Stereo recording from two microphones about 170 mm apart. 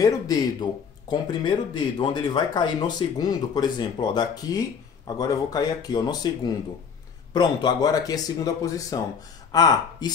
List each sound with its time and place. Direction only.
0.0 s speech: 25° left (ahead or behind)